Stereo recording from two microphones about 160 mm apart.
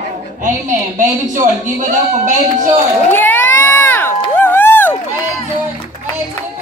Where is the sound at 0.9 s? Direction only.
55° right (ahead or behind).